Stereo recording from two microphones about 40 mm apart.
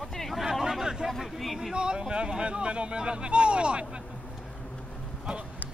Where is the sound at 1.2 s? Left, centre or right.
Centre.